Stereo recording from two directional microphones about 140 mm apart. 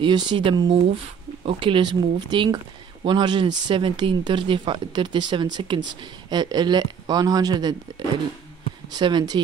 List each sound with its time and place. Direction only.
0.0 s speech: 30° right (ahead or behind)
8.9 s speech: 30° right (ahead or behind)